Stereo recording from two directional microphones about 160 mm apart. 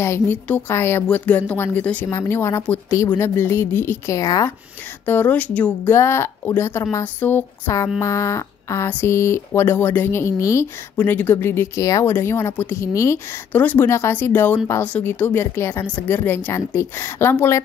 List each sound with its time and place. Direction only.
0.0 s speech: 15° left (ahead or behind)